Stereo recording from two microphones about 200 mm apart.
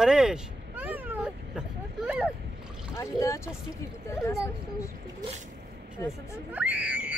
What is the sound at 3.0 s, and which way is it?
Speech, 15° left (ahead or behind).